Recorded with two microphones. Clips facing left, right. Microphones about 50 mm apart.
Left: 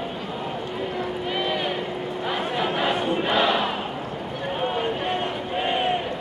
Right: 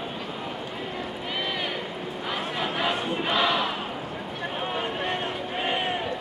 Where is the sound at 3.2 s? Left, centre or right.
Centre.